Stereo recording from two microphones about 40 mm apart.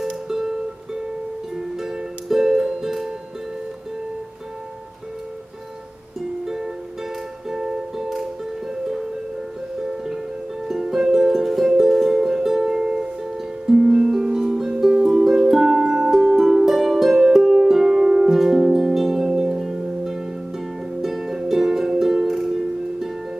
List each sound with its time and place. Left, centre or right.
0.0 s music: centre
1.6 s music: centre
6.4 s music: centre
10.6 s music: centre
16.3 s harp: centre
17.2 s music: centre
17.6 s harp: centre
21.0 s music: centre